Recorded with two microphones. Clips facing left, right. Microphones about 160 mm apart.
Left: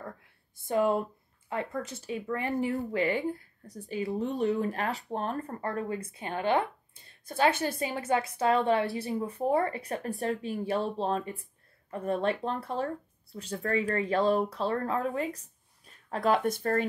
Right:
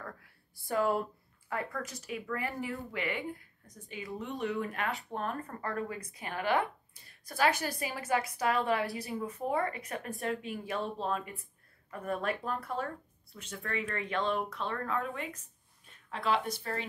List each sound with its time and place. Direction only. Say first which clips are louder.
0.6 s speech: left 4 dB; 20° left (ahead or behind); by 16.8 s 50° left (ahead or behind)